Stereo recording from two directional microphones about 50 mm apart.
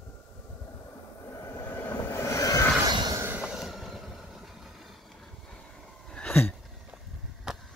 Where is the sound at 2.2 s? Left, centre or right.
Left.